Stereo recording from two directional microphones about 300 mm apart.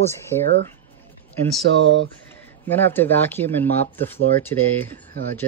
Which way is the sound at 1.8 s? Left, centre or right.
Right.